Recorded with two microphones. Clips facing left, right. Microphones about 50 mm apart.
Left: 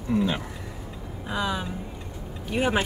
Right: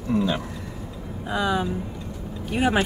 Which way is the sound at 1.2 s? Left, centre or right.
Centre.